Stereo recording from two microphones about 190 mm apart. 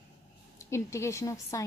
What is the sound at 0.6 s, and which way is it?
A woman's voice, 15° left (ahead or behind).